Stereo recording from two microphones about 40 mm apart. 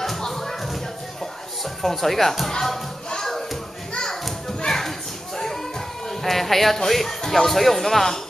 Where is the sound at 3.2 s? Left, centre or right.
Centre.